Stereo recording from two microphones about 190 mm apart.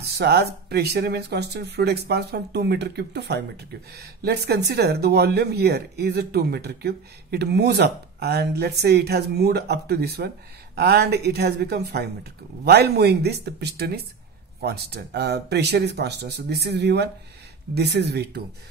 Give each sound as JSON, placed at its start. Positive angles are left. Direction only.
{"t": 0.0, "sound": "speech", "side_deg": -60}